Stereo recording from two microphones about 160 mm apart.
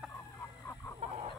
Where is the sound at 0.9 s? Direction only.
40° right (ahead or behind).